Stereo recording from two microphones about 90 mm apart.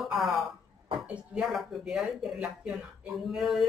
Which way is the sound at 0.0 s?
Centre (ahead or behind).